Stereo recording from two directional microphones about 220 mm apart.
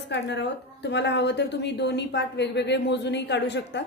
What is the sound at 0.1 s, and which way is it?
A woman's voice, 50° left (ahead or behind).